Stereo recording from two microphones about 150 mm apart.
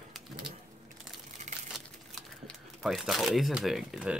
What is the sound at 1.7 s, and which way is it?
Speech, centre (ahead or behind).